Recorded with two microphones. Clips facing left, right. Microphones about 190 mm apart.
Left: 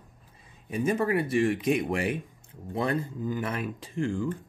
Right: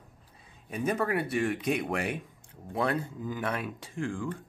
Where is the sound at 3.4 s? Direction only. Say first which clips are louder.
Left 1 dB; centre (ahead or behind).